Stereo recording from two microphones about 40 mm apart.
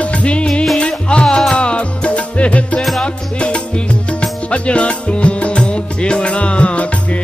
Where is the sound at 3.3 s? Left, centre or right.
Left.